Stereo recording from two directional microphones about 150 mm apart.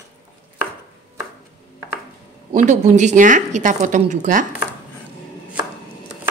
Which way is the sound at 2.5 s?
55° right (ahead or behind).